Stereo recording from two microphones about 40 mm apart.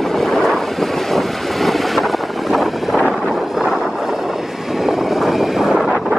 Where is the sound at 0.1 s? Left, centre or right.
Centre.